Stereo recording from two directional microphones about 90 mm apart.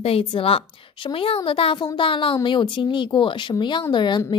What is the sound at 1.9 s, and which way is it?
Speech, 75° left (ahead or behind).